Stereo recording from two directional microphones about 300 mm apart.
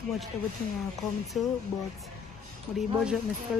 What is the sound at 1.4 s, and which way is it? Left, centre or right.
Speech, centre.